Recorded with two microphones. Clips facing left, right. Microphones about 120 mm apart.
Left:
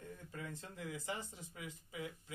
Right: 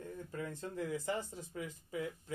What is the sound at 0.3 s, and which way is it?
Speech, 40° right (ahead or behind).